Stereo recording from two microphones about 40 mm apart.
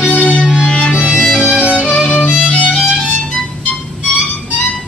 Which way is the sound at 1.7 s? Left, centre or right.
Left.